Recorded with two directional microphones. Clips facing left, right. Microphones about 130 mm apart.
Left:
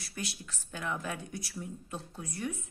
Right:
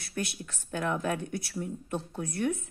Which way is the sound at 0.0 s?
60° right (ahead or behind).